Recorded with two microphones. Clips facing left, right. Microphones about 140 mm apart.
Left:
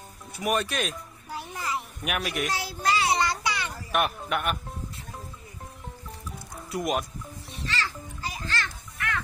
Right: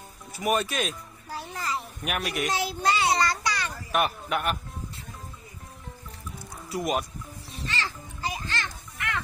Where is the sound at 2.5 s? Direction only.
20° right (ahead or behind).